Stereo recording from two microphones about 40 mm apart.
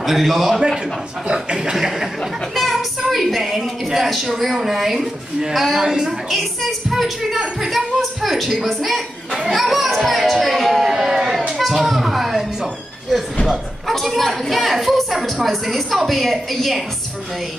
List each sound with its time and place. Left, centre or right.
0.0 s a woman's voice: centre
1.2 s speech: right
2.5 s a sound: centre
3.6 s a woman's voice: centre
5.8 s speech: centre
6.2 s a woman's voice: centre
6.9 s a woman's voice: centre
13.5 s a sound: centre
14.5 s a woman's voice: centre